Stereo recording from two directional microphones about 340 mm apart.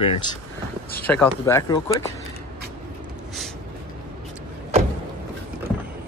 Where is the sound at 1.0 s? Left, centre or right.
Centre.